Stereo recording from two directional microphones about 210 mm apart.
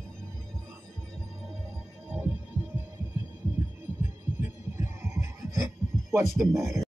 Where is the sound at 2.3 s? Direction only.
10° right (ahead or behind).